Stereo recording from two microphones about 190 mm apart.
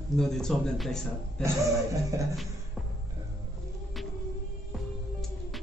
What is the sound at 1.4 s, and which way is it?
Music, 15° right (ahead or behind).